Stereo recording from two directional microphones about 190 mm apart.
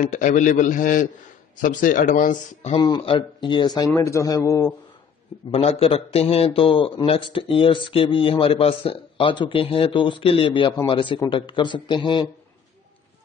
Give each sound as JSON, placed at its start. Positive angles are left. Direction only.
{"t": 0.0, "sound": "a man's voice", "side_deg": 40}
{"t": 2.7, "sound": "a man's voice", "side_deg": 25}
{"t": 5.5, "sound": "a man's voice", "side_deg": 30}